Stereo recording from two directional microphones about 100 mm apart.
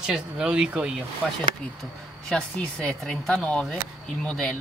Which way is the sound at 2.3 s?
5° left (ahead or behind).